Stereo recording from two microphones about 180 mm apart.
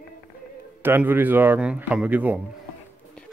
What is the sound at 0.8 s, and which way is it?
Speech, 10° right (ahead or behind).